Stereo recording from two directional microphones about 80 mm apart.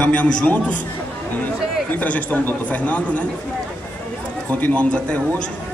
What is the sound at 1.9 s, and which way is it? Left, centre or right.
A man's voice, centre.